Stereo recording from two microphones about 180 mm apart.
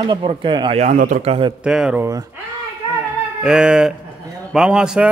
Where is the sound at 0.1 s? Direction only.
30° right (ahead or behind); by 1.2 s 45° right (ahead or behind).